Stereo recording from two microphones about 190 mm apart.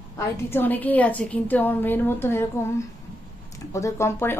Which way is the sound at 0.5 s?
10° left (ahead or behind).